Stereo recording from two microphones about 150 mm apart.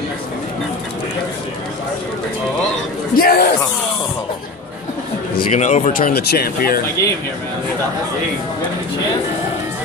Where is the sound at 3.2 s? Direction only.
85° left.